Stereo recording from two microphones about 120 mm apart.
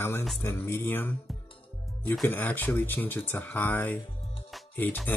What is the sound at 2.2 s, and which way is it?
Speech, 15° left (ahead or behind).